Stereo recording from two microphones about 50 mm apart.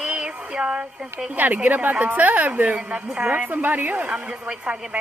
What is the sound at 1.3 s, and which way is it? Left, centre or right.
A woman's voice, right.